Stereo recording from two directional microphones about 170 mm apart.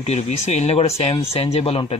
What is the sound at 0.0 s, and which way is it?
Speech, 40° left (ahead or behind).